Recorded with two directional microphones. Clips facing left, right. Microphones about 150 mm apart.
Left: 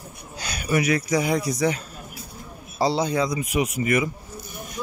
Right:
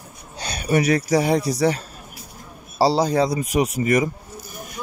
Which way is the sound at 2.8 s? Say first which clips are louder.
Right 4 dB; 35° right (ahead or behind).